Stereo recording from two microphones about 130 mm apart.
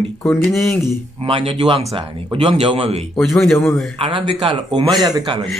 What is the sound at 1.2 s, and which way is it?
Speech, 45° right (ahead or behind).